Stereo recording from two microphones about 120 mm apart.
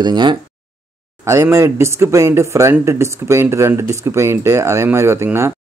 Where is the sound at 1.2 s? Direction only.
25° right (ahead or behind).